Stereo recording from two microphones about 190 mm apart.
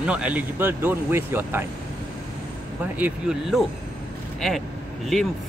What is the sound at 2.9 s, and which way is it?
Speech, 5° right (ahead or behind).